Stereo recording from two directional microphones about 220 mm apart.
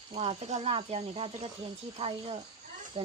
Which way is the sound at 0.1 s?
25° right (ahead or behind).